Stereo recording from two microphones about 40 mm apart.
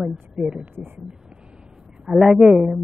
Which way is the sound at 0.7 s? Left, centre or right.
Right.